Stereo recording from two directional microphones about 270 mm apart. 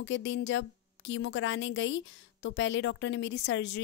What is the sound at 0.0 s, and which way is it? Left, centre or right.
A woman's voice, left.